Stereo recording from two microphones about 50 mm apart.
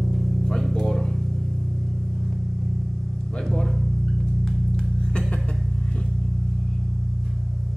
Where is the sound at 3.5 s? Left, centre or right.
Centre.